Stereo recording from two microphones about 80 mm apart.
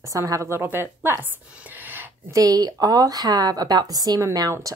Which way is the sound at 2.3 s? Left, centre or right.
Right.